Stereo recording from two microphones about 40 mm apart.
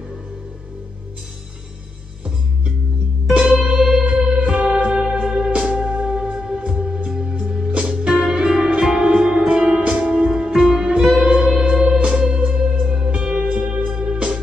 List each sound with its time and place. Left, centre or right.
3.3 s music: centre; by 14.4 s right